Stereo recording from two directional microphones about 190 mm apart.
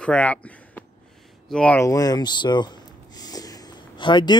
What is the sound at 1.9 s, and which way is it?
Speech, 20° left (ahead or behind).